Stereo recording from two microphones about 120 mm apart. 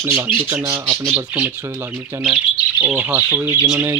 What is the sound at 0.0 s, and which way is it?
Speech, 20° right (ahead or behind).